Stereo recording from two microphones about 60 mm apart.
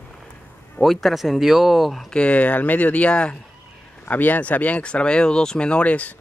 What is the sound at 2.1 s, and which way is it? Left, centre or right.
Speech, left.